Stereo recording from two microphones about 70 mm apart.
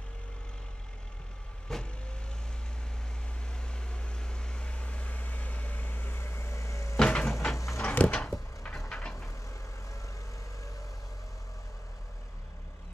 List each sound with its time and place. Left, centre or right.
1.7 s vehicle: centre
3.4 s vehicle: centre; by 7.0 s left
7.0 s cupboard open or close: centre
7.5 s a sound: left
7.9 s a sound: centre
8.7 s vehicle: centre